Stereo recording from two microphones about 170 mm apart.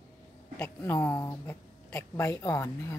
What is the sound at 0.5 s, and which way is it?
Speech, 10° left (ahead or behind).